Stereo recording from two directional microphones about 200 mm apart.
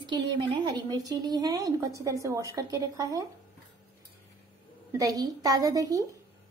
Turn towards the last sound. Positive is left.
turn(degrees=-15)  # may be behind; listen again after turning